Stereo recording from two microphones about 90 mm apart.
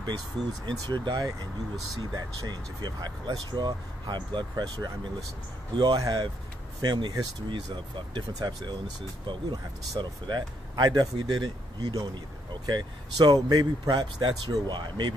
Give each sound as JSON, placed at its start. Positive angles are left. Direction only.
{"t": 0.0, "sound": "speech", "side_deg": -55}
{"t": 5.8, "sound": "speech", "side_deg": -45}
{"t": 6.8, "sound": "speech", "side_deg": -55}
{"t": 9.3, "sound": "speech", "side_deg": -60}
{"t": 12.6, "sound": "speech", "side_deg": -55}